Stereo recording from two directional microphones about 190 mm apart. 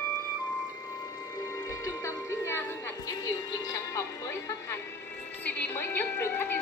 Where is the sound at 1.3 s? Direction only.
15° left (ahead or behind).